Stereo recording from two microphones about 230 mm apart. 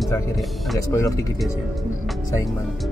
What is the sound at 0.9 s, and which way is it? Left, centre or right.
Speech, centre.